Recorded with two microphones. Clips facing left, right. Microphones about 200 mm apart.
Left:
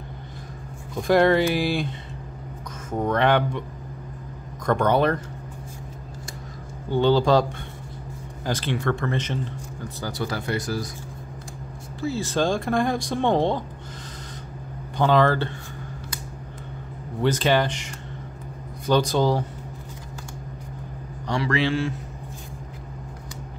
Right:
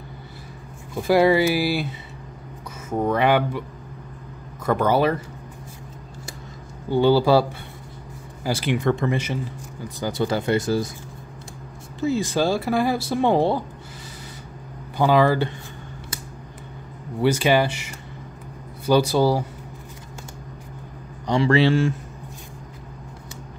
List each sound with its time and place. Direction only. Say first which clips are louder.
0.9 s speech: right 1 dB; 5° right (ahead or behind)
4.6 s speech: right 1 dB; 5° right (ahead or behind)
6.9 s speech: right 2 dB; 10° right (ahead or behind)
8.5 s speech: right 3 dB; 10° right (ahead or behind)
12.0 s speech: right 3 dB; 15° right (ahead or behind)
15.0 s speech: right 2 dB; 10° right (ahead or behind)
17.2 s speech: right 2 dB; 10° right (ahead or behind)
21.3 s a man's voice: right 6 dB; 25° right (ahead or behind)